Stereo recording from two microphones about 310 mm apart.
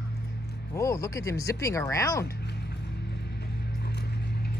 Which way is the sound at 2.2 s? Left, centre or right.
Left.